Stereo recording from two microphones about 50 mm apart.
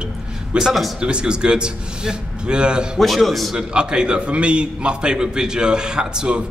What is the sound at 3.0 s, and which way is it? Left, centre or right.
Speech, centre.